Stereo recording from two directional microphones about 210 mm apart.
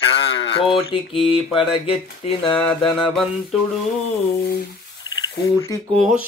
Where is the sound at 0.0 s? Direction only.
25° left (ahead or behind).